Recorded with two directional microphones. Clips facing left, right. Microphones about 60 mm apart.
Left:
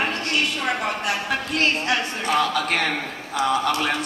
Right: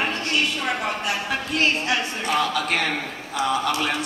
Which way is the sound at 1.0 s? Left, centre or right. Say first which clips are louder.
Left 1 dB; left.